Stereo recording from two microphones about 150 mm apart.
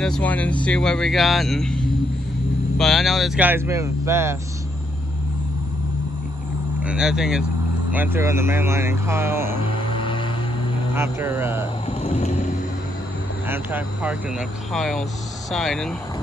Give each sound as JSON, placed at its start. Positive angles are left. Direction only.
{"t": 0.0, "sound": "speech", "side_deg": 5}
{"t": 2.8, "sound": "speech", "side_deg": 0}
{"t": 3.4, "sound": "speech", "side_deg": -15}
{"t": 6.8, "sound": "speech", "side_deg": -5}
{"t": 9.9, "sound": "music", "side_deg": 35}
{"t": 11.0, "sound": "speech", "side_deg": -15}
{"t": 12.0, "sound": "music", "side_deg": 45}
{"t": 13.5, "sound": "speech", "side_deg": -10}
{"t": 14.7, "sound": "speech", "side_deg": 0}